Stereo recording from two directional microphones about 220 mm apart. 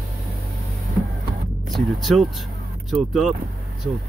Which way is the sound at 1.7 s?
Centre (ahead or behind).